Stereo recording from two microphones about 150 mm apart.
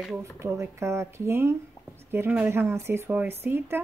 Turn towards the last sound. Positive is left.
turn(degrees=-15)  # may be behind; listen again after turning